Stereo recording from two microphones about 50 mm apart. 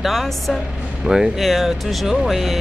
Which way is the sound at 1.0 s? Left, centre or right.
Centre.